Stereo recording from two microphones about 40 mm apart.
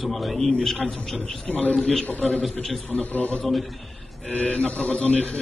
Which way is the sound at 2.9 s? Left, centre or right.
Left.